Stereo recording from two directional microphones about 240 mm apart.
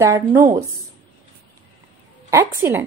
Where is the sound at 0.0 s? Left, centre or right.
Centre.